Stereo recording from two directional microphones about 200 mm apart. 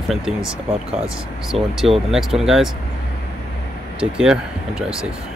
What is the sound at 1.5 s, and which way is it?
Speech, 30° right (ahead or behind).